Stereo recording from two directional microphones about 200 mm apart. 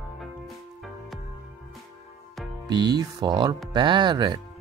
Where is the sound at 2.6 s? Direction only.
20° right (ahead or behind).